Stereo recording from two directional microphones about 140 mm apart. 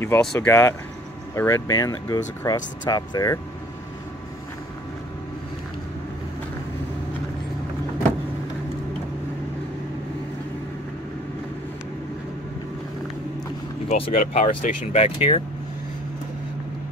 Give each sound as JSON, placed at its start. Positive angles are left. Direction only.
{"t": 0.2, "sound": "speech", "side_deg": 5}
{"t": 0.5, "sound": "speech", "side_deg": 20}
{"t": 13.8, "sound": "speech", "side_deg": 45}
{"t": 14.1, "sound": "speech", "side_deg": 70}